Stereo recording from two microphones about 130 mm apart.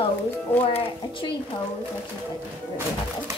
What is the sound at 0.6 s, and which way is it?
Speech, 40° left (ahead or behind).